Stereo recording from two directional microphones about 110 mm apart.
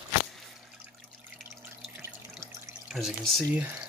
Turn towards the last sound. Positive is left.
turn(degrees=0)  # may be behind; listen again after turning